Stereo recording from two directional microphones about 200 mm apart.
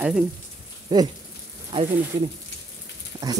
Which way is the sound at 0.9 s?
20° right (ahead or behind).